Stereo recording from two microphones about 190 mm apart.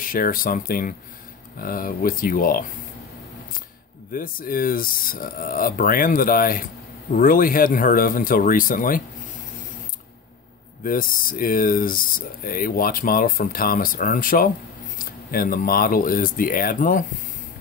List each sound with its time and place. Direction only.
0.0 s speech: 50° left (ahead or behind)
4.1 s speech: 50° left (ahead or behind)
10.8 s speech: 50° left (ahead or behind)